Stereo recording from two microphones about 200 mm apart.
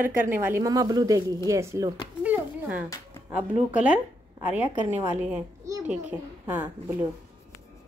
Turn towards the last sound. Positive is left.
turn(degrees=-10)  # may be behind; listen again after turning